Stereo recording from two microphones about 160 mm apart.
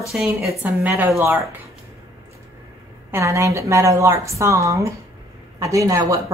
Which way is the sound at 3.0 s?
15° right (ahead or behind).